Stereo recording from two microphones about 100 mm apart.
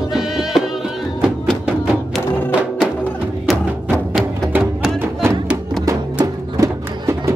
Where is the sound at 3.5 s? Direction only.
Centre (ahead or behind).